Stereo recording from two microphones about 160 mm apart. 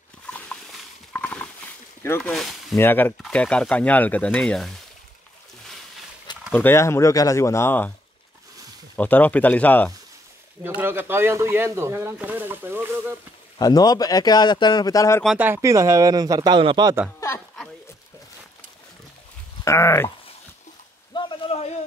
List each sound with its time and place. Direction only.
0.3 s a sound: 10° left (ahead or behind)
2.0 s speech: 10° left (ahead or behind)
2.8 s speech: 15° left (ahead or behind)
6.5 s speech: 15° left (ahead or behind)
8.9 s speech: 10° left (ahead or behind)
10.6 s speech: 15° right (ahead or behind)
13.6 s a man's voice: 25° left (ahead or behind)
15.3 s speech: 15° right (ahead or behind); by 16.9 s 30° right (ahead or behind)
19.6 s a sound: 15° left (ahead or behind)
21.1 s a sound: 30° left (ahead or behind)